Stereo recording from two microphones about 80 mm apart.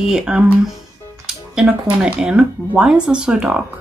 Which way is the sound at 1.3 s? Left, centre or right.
Centre.